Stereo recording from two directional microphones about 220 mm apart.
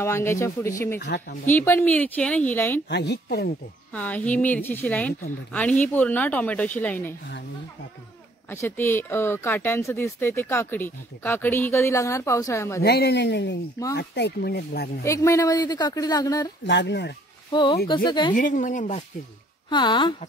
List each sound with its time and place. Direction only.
0.0 s speech: 10° left (ahead or behind)
0.9 s speech: 45° left (ahead or behind)
1.5 s speech: 10° left (ahead or behind)
2.9 s speech: 50° left (ahead or behind)
3.9 s speech: 5° left (ahead or behind)
8.5 s speech: 10° left (ahead or behind)
12.8 s speech: 45° left (ahead or behind)
15.0 s speech: 15° left (ahead or behind)
16.6 s speech: 50° left (ahead or behind)
17.5 s speech: 20° left (ahead or behind)
18.3 s speech: 35° left (ahead or behind)
19.7 s speech: 20° left (ahead or behind)